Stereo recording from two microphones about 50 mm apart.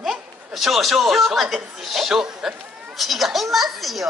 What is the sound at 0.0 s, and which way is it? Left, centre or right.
A child's voice, centre.